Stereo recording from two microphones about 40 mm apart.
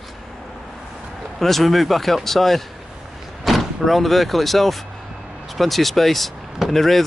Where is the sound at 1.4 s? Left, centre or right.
Centre.